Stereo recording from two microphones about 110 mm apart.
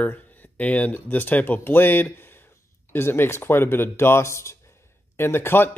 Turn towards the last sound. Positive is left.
turn(degrees=20)  # may be behind; listen again after turning